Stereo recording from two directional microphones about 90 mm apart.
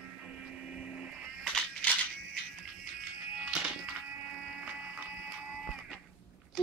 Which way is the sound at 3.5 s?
10° right (ahead or behind).